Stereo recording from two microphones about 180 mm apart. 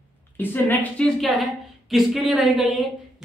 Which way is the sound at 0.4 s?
10° left (ahead or behind).